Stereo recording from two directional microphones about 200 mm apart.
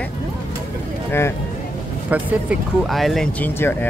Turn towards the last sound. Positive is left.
turn(degrees=10)  # may be behind; listen again after turning